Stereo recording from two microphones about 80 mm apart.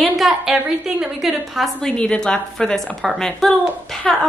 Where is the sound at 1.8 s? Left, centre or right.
Centre.